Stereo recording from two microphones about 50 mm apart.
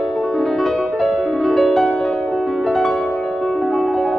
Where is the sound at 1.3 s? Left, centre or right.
Centre.